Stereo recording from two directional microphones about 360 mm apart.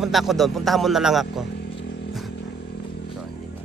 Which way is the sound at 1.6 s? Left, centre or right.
Left.